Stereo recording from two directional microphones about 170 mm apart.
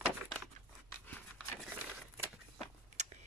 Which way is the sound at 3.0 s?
45° right (ahead or behind).